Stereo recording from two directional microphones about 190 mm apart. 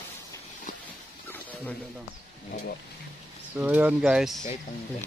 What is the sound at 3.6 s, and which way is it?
Speech, 10° right (ahead or behind).